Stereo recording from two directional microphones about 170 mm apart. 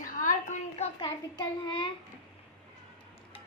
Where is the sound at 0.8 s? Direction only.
30° left (ahead or behind).